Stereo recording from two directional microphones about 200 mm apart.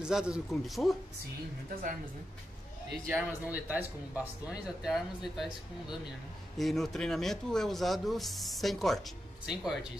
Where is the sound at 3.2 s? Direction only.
5° right (ahead or behind).